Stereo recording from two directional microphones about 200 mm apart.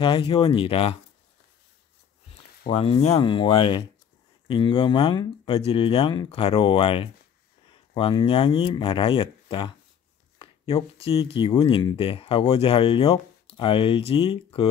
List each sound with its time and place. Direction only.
0.0 s speech: 25° left (ahead or behind)
2.7 s speech: 30° left (ahead or behind)